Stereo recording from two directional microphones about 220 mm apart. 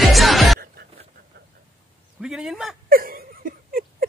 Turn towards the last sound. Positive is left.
turn(degrees=-40)  # may be behind; listen again after turning